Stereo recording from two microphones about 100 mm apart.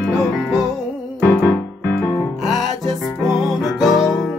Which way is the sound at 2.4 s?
Centre (ahead or behind).